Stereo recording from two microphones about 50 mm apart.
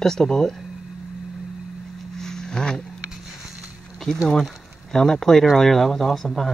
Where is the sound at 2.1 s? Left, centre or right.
Centre.